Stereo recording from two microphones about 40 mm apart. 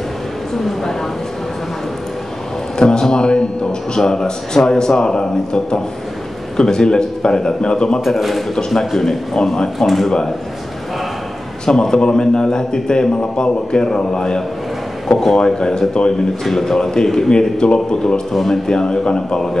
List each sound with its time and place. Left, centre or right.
2.8 s a man's voice: centre
8.0 s a man's voice: centre
11.6 s a man's voice: centre
16.4 s a man's voice: centre